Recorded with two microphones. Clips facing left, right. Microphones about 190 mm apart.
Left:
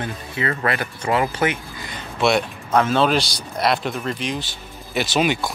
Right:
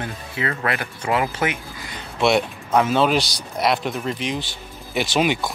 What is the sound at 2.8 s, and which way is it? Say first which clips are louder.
Speech: even; 10° right (ahead or behind).